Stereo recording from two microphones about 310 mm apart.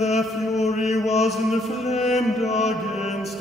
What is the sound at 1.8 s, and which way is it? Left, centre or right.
Music, left.